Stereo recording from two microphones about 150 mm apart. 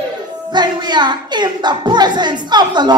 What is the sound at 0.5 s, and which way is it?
Speech, 30° right (ahead or behind).